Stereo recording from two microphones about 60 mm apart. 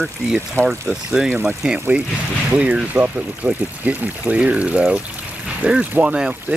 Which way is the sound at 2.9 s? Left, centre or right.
Right.